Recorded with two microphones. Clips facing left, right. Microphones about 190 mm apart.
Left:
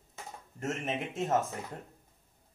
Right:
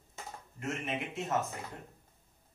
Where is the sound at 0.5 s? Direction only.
40° left (ahead or behind).